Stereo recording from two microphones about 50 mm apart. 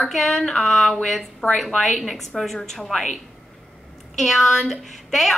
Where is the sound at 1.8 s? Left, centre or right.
Centre.